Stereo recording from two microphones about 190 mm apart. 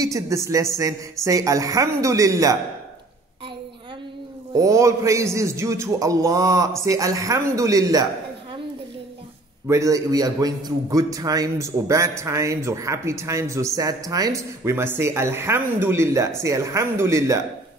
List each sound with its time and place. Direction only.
0.0 s a man's voice: 15° right (ahead or behind)
4.6 s a man's voice: 15° right (ahead or behind)
9.7 s a man's voice: 15° right (ahead or behind)